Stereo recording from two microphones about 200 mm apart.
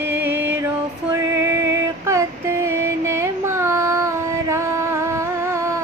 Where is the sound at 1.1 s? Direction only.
15° right (ahead or behind).